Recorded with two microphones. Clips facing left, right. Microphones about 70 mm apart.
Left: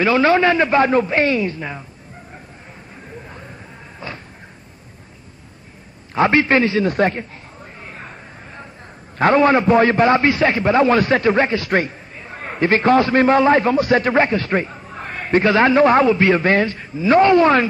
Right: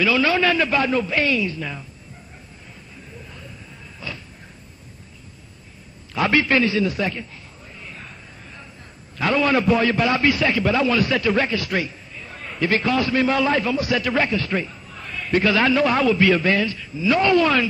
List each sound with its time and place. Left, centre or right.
0.0 s a man's voice: left
3.3 s a sound: left
4.0 s vehicle: left
6.1 s a man's voice: left
6.8 s a man's voice: left
7.8 s a sound: left
9.2 s a man's voice: left